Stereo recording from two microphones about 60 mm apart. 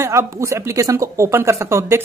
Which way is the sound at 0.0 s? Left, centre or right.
Right.